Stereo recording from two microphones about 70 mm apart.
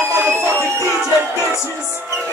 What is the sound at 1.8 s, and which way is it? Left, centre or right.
Music, right.